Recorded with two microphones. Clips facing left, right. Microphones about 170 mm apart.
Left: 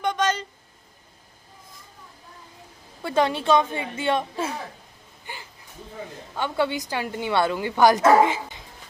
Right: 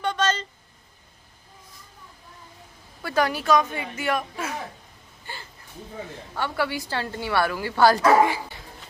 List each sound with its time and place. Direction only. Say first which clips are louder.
0.0 s a sound: left 1 dB; 15° left (ahead or behind)
3.0 s a woman's voice: left 2 dB; 25° left (ahead or behind)
5.2 s gasp: even; 15° left (ahead or behind)
6.3 s a woman's voice: left 2 dB; 20° left (ahead or behind)